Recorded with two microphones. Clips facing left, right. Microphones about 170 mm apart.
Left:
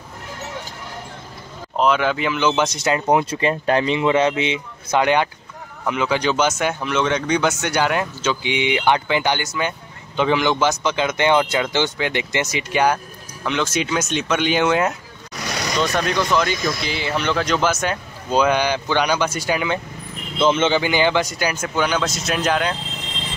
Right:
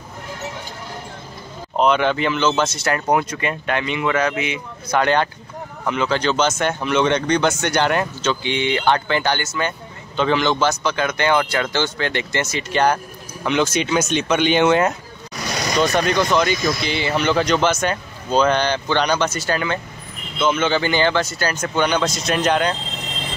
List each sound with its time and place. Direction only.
1.8 s speech: 5° left (ahead or behind); by 3.3 s 20° left (ahead or behind)
3.3 s speech: 30° left (ahead or behind)
5.0 s speech: 10° left (ahead or behind)
13.4 s speech: 5° right (ahead or behind)
16.0 s speech: centre (ahead or behind)
20.3 s speech: 25° left (ahead or behind); by 22.8 s centre (ahead or behind)